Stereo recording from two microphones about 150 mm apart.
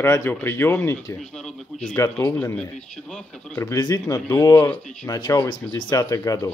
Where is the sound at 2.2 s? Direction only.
15° left (ahead or behind).